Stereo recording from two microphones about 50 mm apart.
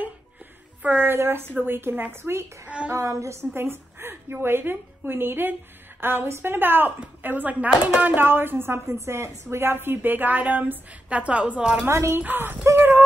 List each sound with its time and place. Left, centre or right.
0.8 s a woman's voice: right
2.2 s speech: right
2.9 s a woman's voice: right
3.5 s a woman's voice: right
8.9 s a woman's voice: right
11.9 s a woman's voice: right
12.7 s a sound: right